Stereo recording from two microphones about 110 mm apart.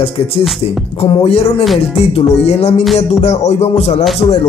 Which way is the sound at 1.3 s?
70° left (ahead or behind).